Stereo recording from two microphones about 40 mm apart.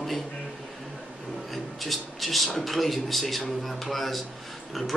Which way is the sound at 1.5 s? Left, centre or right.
Centre.